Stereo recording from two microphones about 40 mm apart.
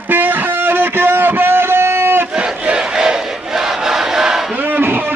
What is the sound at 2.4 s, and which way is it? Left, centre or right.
Battle cry, right.